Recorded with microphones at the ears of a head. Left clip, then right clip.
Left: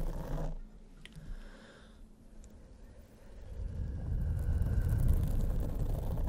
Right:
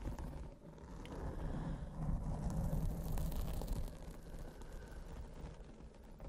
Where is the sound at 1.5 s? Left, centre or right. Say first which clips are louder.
Right 6 dB; right.